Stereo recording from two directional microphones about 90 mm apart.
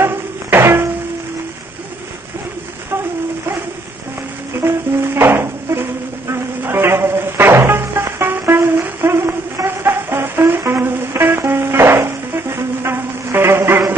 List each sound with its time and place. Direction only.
0.0 s music: 25° right (ahead or behind)
4.6 s music: 25° right (ahead or behind)